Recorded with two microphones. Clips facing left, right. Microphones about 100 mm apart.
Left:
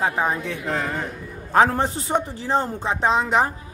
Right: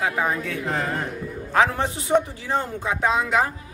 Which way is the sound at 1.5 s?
35° left (ahead or behind).